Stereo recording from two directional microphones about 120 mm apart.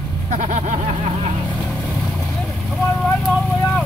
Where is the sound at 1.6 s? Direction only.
Centre (ahead or behind).